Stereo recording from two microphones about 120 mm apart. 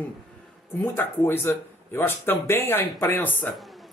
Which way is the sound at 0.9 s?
20° left (ahead or behind).